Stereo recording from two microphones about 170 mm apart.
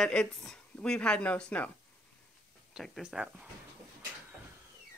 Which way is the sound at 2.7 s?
5° right (ahead or behind).